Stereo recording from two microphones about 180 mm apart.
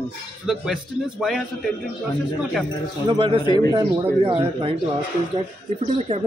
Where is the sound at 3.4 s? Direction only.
25° left (ahead or behind).